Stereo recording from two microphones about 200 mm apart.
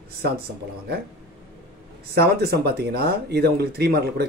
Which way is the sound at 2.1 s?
55° right (ahead or behind).